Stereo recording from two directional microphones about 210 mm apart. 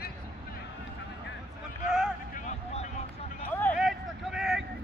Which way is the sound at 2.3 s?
35° left (ahead or behind).